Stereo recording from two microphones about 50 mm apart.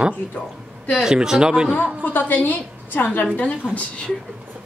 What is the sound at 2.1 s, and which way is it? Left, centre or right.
Speech, left.